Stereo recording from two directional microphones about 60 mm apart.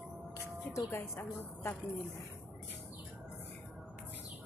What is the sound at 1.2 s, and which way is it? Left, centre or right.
Speech, left.